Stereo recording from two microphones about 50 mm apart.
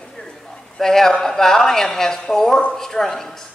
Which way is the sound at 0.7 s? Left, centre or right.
Centre.